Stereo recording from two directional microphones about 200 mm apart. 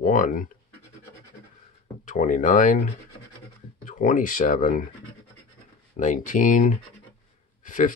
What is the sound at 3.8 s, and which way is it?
Speech, 40° left (ahead or behind).